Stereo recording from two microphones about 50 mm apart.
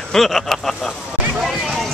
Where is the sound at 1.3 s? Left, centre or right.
Centre.